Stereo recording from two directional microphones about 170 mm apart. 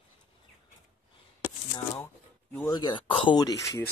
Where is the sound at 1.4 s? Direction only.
25° left (ahead or behind).